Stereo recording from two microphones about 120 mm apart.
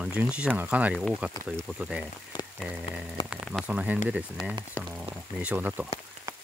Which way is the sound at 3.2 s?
40° left (ahead or behind).